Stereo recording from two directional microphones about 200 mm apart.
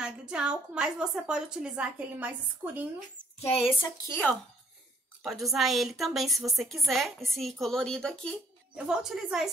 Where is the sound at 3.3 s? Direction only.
30° left (ahead or behind).